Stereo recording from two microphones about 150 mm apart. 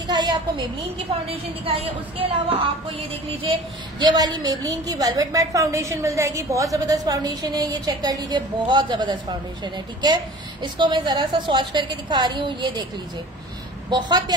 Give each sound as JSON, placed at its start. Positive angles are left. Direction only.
{"t": 0.0, "sound": "a sound", "side_deg": -30}
{"t": 1.3, "sound": "a woman's voice", "side_deg": -40}
{"t": 4.0, "sound": "a woman's voice", "side_deg": -25}
{"t": 13.8, "sound": "a woman's voice", "side_deg": -30}